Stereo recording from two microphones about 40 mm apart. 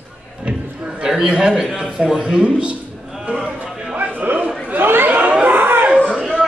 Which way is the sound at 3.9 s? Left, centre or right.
Right.